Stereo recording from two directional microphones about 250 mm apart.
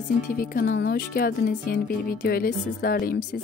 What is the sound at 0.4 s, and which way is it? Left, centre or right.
Speech, left.